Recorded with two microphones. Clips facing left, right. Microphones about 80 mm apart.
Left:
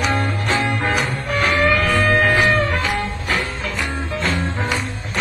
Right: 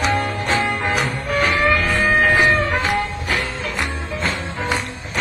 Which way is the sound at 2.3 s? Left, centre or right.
Centre.